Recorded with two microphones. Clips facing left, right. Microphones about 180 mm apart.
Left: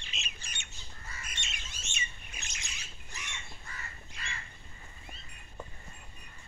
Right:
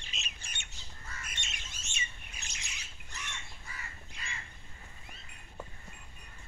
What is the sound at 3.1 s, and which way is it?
Crow, 10° left (ahead or behind).